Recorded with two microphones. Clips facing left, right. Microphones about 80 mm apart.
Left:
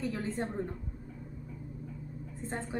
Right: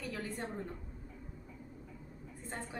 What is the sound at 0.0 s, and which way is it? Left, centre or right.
Speech, left.